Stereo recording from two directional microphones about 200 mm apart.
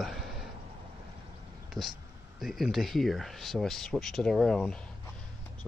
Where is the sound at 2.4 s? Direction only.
Centre (ahead or behind).